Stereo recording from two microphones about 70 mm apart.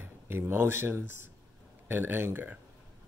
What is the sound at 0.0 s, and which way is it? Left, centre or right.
Speech, right.